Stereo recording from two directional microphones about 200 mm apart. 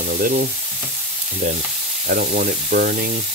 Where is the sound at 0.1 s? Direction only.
50° right (ahead or behind).